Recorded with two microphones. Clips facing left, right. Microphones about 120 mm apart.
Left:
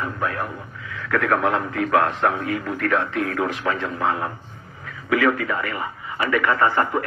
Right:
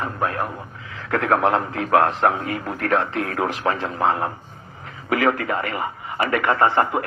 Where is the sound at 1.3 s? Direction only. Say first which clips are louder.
Right 4 dB; 30° right (ahead or behind).